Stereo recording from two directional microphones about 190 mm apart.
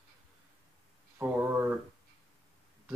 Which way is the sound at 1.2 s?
10° right (ahead or behind).